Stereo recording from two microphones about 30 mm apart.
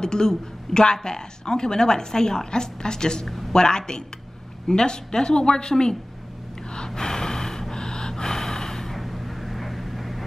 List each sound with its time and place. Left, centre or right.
0.0 s speech: left
7.0 s gasp: left
8.9 s vehicle: centre